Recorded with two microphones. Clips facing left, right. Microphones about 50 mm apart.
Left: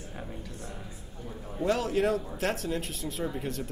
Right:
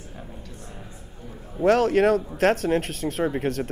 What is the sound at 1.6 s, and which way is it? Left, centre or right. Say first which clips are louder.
Speech: right 8 dB; right.